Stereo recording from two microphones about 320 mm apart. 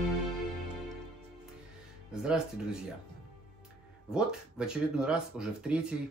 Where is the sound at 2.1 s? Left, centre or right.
Centre.